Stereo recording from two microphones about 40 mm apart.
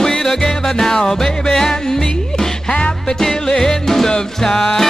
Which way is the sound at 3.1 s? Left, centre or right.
Centre.